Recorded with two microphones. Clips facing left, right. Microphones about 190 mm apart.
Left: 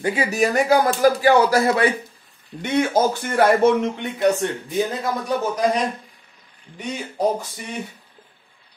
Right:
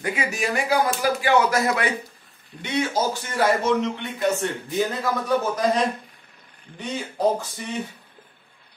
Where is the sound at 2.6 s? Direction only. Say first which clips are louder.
Left 5 dB; 50° left (ahead or behind).